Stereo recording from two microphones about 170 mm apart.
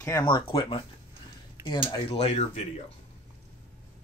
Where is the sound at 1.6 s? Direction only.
15° right (ahead or behind).